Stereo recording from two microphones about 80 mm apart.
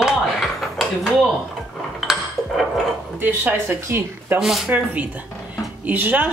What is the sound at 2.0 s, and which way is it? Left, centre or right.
Dishes, centre.